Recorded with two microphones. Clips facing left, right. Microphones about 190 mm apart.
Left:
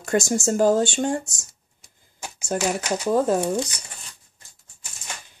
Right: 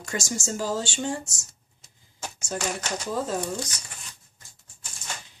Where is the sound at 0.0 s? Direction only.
55° left (ahead or behind).